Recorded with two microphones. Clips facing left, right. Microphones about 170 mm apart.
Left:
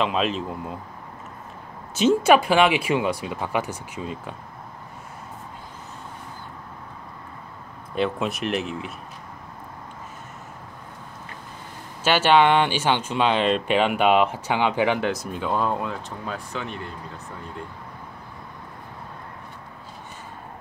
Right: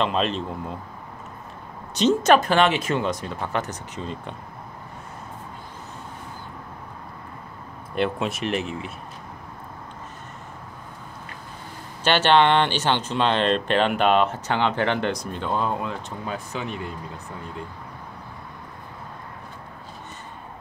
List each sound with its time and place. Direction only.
0.0 s speech: 5° left (ahead or behind)
2.0 s speech: 10° left (ahead or behind)
7.9 s speech: centre (ahead or behind)
12.0 s speech: 5° left (ahead or behind)